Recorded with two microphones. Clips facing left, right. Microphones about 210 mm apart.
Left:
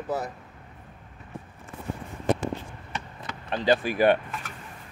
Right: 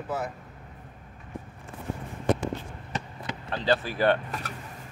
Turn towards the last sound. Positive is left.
turn(degrees=15)  # may be behind; listen again after turning